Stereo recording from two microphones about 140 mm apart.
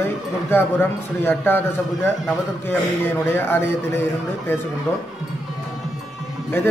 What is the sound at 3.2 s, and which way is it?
Speech, 15° left (ahead or behind).